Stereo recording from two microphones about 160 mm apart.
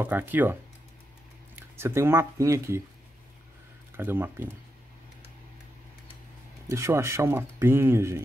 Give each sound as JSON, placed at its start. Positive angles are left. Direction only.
{"t": 0.0, "sound": "speech", "side_deg": -10}
{"t": 3.9, "sound": "speech", "side_deg": -15}
{"t": 6.7, "sound": "speech", "side_deg": -15}